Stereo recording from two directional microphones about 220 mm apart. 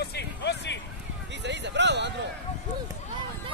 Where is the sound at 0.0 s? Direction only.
50° left (ahead or behind).